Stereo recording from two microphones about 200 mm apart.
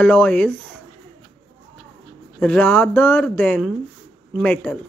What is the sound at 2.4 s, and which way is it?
Speech, 5° left (ahead or behind).